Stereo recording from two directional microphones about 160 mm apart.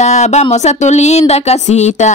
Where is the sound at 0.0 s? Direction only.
45° left (ahead or behind).